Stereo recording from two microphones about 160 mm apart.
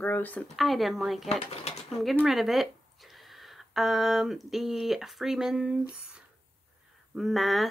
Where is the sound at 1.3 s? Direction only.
40° left (ahead or behind).